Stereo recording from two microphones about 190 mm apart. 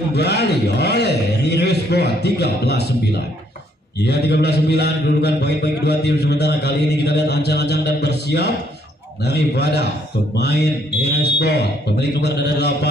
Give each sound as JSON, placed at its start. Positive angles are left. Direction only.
{"t": 0.1, "sound": "a man's voice", "side_deg": 60}
{"t": 4.0, "sound": "a man's voice", "side_deg": 60}